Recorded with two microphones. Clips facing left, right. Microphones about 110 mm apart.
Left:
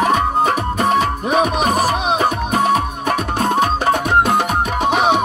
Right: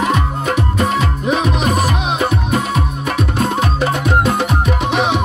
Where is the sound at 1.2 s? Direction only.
50° left (ahead or behind).